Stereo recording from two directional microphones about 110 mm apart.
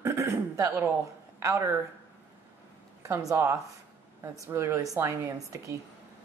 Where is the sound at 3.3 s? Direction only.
25° right (ahead or behind).